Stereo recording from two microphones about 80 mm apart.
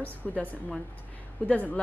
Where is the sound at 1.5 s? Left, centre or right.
Centre.